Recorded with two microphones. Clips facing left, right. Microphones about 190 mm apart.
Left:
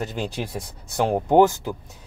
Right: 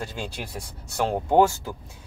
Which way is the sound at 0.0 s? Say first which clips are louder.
Left 5 dB; 20° left (ahead or behind).